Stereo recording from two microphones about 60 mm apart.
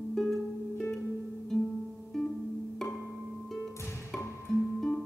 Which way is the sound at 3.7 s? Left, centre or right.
Left.